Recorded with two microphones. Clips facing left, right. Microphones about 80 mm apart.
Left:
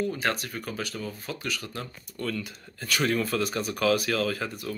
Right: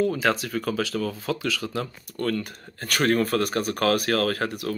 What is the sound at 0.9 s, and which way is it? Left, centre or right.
Speech, right.